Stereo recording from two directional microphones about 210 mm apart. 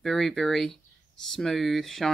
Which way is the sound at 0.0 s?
Centre (ahead or behind).